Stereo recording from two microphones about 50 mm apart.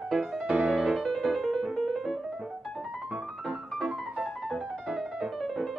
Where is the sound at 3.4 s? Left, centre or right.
Centre.